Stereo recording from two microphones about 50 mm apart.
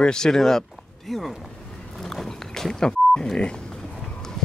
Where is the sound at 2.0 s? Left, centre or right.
Centre.